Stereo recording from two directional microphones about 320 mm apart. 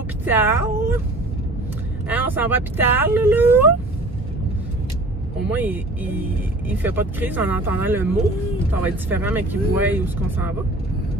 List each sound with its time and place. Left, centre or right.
0.2 s speech: centre
2.0 s speech: centre
5.5 s speech: centre